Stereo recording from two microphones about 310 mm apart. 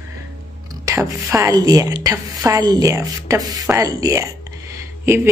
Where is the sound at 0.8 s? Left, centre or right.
Centre.